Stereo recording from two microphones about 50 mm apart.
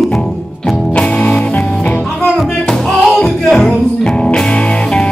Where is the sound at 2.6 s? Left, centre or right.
Centre.